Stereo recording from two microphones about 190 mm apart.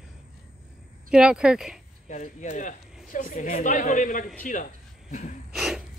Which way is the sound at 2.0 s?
40° left (ahead or behind).